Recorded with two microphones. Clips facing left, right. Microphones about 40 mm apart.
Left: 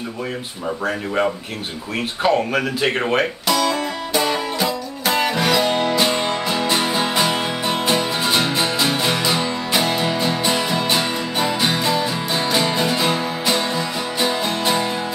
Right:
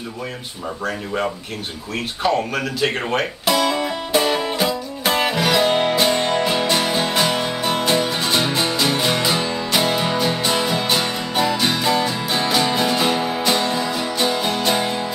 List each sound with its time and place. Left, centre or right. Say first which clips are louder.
0.8 s speech: left 3 dB; centre
3.4 s music: right 1 dB; centre
5.3 s music: even; centre
5.6 s music: right 1 dB; centre
5.9 s music: right 1 dB; centre
6.3 s music: right 2 dB; centre
6.7 s music: even; centre
9.8 s music: even; centre
11.8 s music: right 1 dB; centre